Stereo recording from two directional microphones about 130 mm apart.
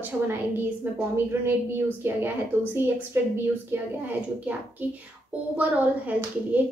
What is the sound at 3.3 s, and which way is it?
A woman's voice, 15° right (ahead or behind).